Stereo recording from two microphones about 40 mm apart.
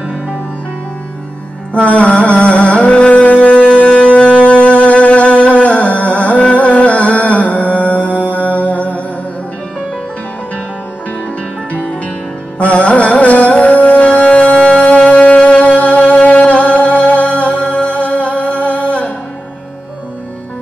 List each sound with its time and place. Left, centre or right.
1.7 s music: left
12.5 s music: left